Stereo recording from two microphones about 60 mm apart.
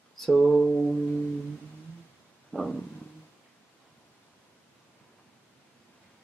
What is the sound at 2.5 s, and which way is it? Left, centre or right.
Stomach rumble, centre.